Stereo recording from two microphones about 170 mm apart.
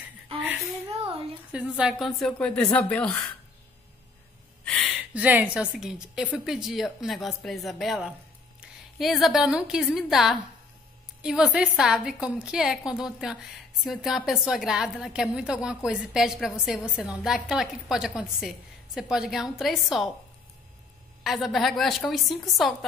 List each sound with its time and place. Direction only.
0.9 s a sound: 30° right (ahead or behind)
1.5 s a woman's voice: 5° right (ahead or behind)
4.6 s a woman's voice: centre (ahead or behind)
21.2 s a woman's voice: centre (ahead or behind)